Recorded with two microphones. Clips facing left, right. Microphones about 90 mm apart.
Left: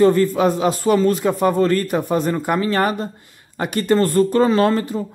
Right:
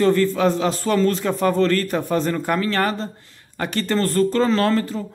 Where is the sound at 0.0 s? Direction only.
15° left (ahead or behind).